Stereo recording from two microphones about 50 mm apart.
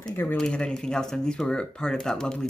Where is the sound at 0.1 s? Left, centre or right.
Left.